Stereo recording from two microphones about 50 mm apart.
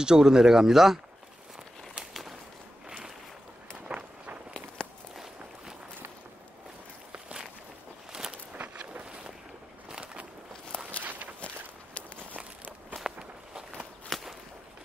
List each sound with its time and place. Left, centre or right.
0.0 s speech: centre
3.9 s run: centre
4.8 s walk: centre
5.1 s walk: centre
8.1 s walk: centre
8.5 s vehicle: right
9.8 s a sound: centre
11.0 s walk: right
13.0 s walk: centre
14.0 s walk: centre